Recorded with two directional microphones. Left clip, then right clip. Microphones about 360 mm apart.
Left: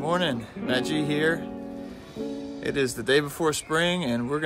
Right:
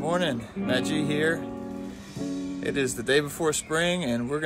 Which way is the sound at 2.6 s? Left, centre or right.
Centre.